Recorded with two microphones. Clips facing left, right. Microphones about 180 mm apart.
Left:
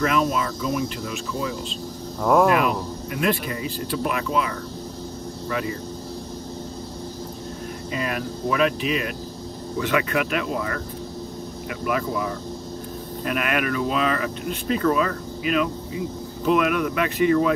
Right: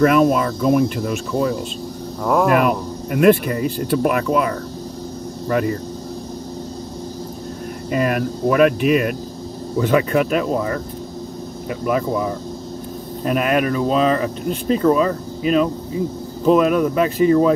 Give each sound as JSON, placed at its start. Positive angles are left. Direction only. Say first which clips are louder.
{"t": 0.0, "sound": "speech", "louder": "right 8 dB", "side_deg": -55}
{"t": 2.2, "sound": "speech", "louder": "even", "side_deg": 0}
{"t": 2.5, "sound": "speech", "louder": "right 5 dB", "side_deg": -50}
{"t": 7.9, "sound": "speech", "louder": "right 9 dB", "side_deg": -50}
{"t": 9.8, "sound": "speech", "louder": "right 7 dB", "side_deg": -35}
{"t": 13.2, "sound": "speech", "louder": "right 7 dB", "side_deg": -35}